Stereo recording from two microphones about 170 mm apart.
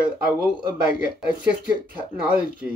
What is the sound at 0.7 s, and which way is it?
Speech, 55° left (ahead or behind).